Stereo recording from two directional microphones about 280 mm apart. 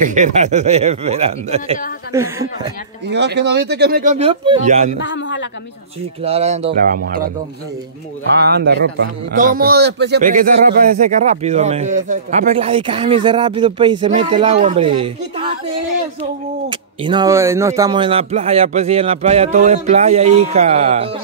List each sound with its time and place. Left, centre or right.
0.0 s a man's voice: right
2.1 s speech: centre
3.1 s a man's voice: right
4.9 s a man's voice: left
6.2 s a man's voice: right
8.4 s a man's voice: right; by 15.5 s centre
16.6 s a man's voice: centre